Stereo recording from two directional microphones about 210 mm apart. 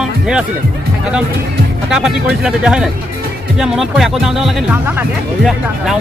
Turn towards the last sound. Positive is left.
turn(degrees=-5)  # may be behind; listen again after turning